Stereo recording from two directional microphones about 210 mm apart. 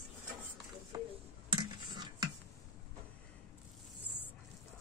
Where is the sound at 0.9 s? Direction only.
20° right (ahead or behind).